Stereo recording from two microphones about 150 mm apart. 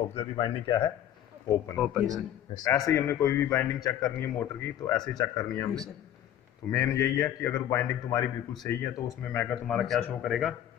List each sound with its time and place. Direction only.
0.1 s speech: 35° left (ahead or behind)
2.0 s speech: 5° left (ahead or behind)
2.5 s a man's voice: 25° left (ahead or behind)
6.7 s a man's voice: 20° left (ahead or behind); by 10.5 s centre (ahead or behind)